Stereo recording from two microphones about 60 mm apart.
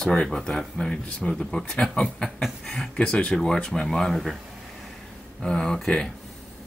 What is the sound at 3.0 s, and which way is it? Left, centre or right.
Speech, centre.